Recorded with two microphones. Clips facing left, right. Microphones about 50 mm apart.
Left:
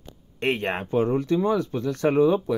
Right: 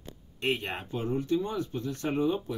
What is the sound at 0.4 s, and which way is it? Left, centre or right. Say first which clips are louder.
Speech: left 6 dB; left.